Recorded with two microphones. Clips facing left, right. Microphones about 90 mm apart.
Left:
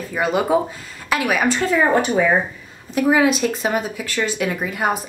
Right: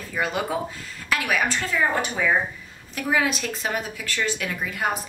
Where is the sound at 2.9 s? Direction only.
15° left (ahead or behind).